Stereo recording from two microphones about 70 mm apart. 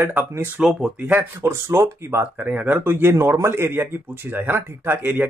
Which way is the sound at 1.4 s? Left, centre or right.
Right.